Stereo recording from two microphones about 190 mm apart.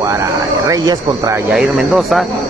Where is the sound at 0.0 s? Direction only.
20° right (ahead or behind).